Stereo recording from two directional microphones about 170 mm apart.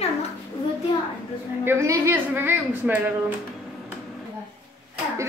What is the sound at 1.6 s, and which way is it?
A woman's voice, 15° right (ahead or behind).